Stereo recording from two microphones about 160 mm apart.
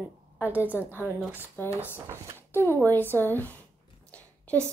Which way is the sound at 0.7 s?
15° left (ahead or behind).